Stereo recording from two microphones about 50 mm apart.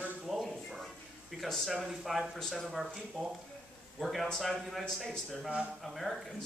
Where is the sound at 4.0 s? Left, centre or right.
Centre.